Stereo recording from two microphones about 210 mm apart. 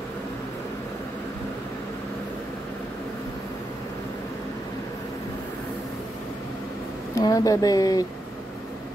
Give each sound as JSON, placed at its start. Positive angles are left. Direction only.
{"t": 7.2, "sound": "speech", "side_deg": 15}